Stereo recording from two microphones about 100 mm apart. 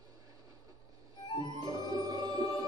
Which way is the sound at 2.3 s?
45° right (ahead or behind).